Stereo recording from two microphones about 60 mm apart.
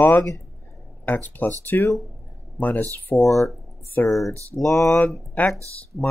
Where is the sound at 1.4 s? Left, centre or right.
Left.